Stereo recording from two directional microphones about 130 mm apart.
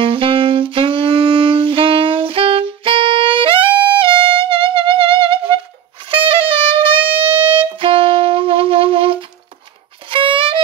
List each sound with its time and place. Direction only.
0.0 s saxophone: 45° right (ahead or behind)
6.0 s music: 45° right (ahead or behind)